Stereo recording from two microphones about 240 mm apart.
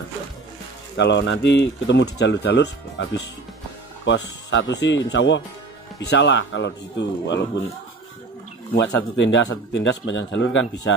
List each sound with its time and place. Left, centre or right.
0.9 s speech: left
8.7 s speech: left